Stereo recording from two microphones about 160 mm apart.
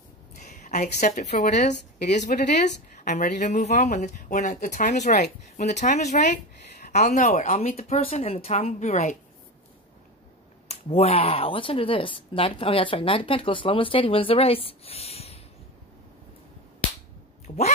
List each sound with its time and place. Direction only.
0.5 s a woman's voice: 50° left (ahead or behind)
10.7 s speech: 40° left (ahead or behind)
17.5 s speech: 45° left (ahead or behind)